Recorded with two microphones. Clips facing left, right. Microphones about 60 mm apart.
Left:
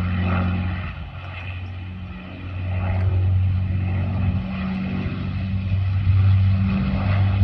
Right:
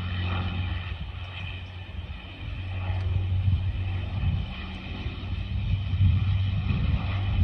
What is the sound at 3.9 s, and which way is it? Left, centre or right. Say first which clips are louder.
Vehicle: left 8 dB; left.